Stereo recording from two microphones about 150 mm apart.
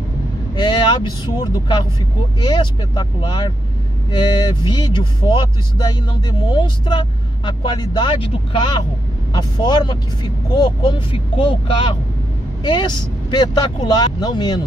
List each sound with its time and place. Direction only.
0.6 s speech: 30° left (ahead or behind)